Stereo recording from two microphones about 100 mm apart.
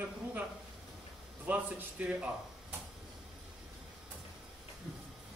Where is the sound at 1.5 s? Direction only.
15° right (ahead or behind).